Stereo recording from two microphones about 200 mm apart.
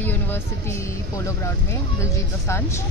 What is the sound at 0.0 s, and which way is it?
A woman's voice, 10° left (ahead or behind).